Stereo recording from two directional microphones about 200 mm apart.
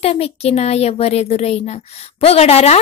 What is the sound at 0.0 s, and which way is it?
A child's voice, 30° left (ahead or behind).